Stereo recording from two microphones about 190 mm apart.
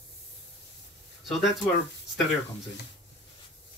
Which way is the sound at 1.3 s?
Centre (ahead or behind).